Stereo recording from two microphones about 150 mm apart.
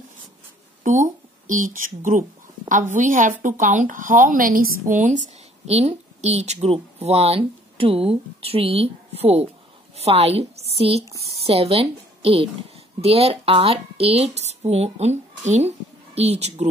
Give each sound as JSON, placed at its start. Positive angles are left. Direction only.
{"t": 0.8, "sound": "a woman's voice", "side_deg": -60}